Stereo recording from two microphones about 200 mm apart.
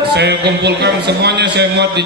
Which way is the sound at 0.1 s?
55° right (ahead or behind).